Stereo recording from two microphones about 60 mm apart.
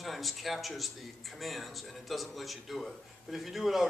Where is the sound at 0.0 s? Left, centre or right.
Centre.